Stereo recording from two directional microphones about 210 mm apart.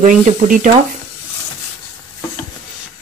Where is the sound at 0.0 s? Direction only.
35° right (ahead or behind).